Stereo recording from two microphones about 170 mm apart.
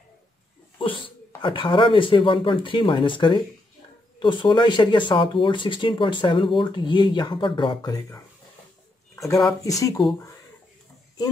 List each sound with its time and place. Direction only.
0.7 s speech: 30° left (ahead or behind)
9.6 s speech: 20° left (ahead or behind)